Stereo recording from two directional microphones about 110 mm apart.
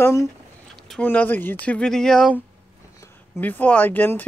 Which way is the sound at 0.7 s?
5° left (ahead or behind).